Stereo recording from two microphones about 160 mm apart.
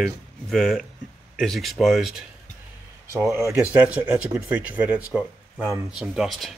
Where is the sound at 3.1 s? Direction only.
20° right (ahead or behind).